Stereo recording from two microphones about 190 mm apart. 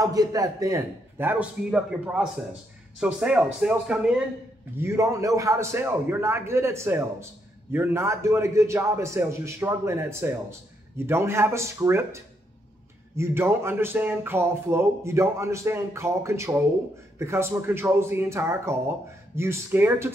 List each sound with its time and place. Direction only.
0.0 s speech: 20° right (ahead or behind)